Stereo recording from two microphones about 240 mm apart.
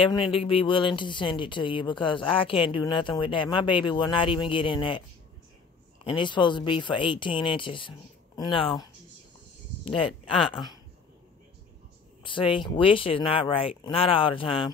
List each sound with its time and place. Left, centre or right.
0.0 s speech: left
6.0 s speech: centre
9.8 s speech: left
12.2 s speech: left